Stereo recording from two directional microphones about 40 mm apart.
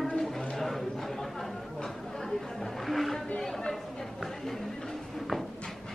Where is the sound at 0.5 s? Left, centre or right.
Centre.